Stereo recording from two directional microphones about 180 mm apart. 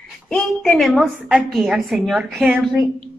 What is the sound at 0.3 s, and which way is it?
A woman's voice, centre (ahead or behind).